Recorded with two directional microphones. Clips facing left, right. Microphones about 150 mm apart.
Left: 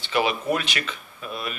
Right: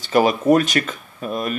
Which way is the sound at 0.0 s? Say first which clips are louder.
Right 7 dB; 40° right (ahead or behind).